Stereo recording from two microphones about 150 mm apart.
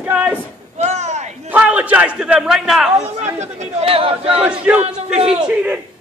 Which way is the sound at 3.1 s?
45° right (ahead or behind).